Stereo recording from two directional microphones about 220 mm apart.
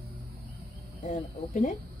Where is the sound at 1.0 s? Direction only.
35° left (ahead or behind).